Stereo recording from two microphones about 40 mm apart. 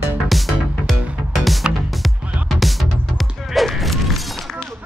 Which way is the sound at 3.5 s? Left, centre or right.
Centre.